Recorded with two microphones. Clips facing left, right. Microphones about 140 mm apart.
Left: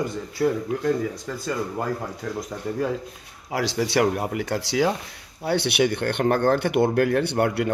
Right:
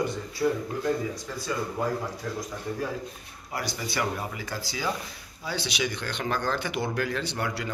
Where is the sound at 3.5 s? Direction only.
90° left.